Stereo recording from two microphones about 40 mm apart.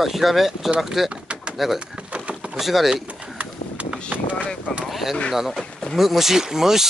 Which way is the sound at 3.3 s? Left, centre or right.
Right.